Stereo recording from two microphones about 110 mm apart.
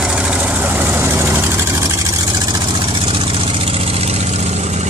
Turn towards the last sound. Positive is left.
turn(degrees=-85)